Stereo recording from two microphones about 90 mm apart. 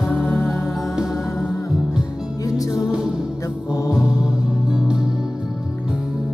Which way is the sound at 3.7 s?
35° left (ahead or behind).